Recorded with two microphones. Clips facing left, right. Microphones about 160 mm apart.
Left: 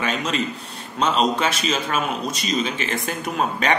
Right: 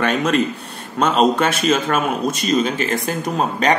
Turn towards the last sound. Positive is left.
turn(degrees=-40)  # may be behind; listen again after turning